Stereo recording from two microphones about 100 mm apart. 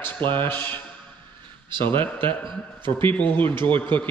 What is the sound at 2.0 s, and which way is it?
A man's voice, 20° left (ahead or behind).